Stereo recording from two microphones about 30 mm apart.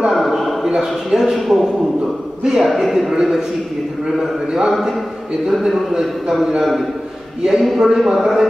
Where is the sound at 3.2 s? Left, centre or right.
Centre.